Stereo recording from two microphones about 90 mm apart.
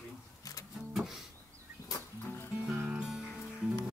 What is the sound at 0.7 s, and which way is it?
Music, centre (ahead or behind).